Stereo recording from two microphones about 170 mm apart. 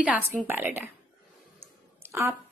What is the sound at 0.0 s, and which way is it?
Speech, 10° right (ahead or behind).